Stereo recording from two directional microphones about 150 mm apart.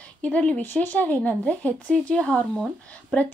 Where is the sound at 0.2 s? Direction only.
10° left (ahead or behind).